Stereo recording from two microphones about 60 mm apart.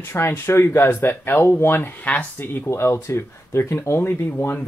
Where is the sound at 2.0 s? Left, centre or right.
Left.